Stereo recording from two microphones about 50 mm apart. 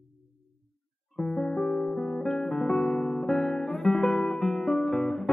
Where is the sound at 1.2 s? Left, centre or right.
Centre.